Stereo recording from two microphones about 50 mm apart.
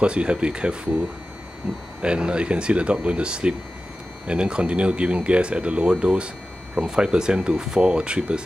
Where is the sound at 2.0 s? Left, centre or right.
Right.